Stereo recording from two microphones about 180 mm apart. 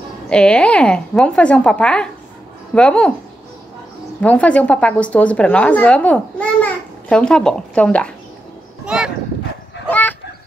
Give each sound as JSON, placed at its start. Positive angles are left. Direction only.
{"t": 0.3, "sound": "a woman's voice", "side_deg": 5}
{"t": 4.2, "sound": "a woman's voice", "side_deg": 5}
{"t": 8.8, "sound": "a sound", "side_deg": -5}
{"t": 9.8, "sound": "fowl", "side_deg": 10}